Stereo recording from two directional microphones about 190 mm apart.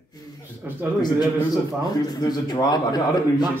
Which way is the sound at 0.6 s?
10° right (ahead or behind).